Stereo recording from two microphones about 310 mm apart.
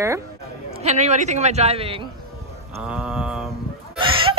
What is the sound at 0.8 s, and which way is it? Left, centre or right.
A man's voice, right.